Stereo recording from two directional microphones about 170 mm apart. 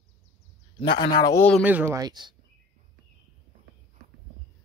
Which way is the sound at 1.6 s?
10° right (ahead or behind).